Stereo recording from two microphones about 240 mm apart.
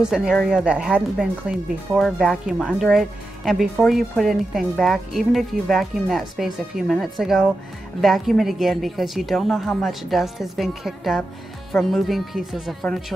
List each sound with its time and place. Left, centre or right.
0.0 s speech: centre